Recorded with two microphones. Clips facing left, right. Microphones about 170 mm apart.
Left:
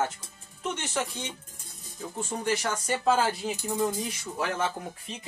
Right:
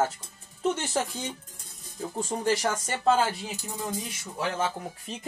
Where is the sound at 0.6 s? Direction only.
35° right (ahead or behind).